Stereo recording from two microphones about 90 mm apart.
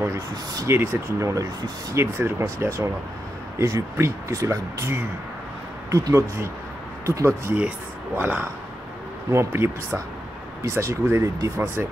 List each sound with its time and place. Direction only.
0.0 s speech: 30° right (ahead or behind)
8.2 s speech: 20° right (ahead or behind); by 11.6 s 35° right (ahead or behind)